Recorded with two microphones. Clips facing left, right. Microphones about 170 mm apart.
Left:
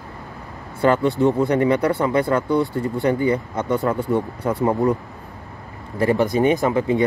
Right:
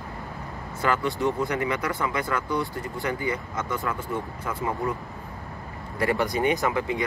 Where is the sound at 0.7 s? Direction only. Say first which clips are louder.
Left 8 dB; 30° left (ahead or behind).